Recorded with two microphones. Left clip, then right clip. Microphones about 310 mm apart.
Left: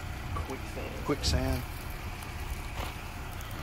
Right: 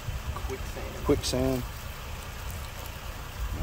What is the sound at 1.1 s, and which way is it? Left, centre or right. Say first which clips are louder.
Speech: right 6 dB; right.